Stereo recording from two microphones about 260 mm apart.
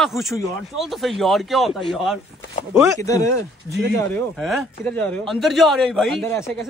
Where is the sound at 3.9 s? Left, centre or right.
Centre.